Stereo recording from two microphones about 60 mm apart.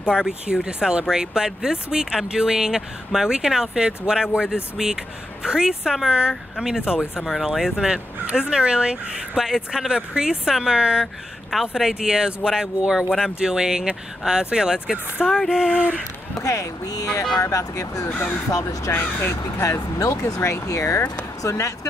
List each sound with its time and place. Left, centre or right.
0.1 s speech: centre
15.2 s music: centre
15.5 s speech: centre
16.4 s speech: left
17.4 s speech: left
18.0 s speech: left
18.5 s speech: left
18.9 s speech: left
20.2 s speech: left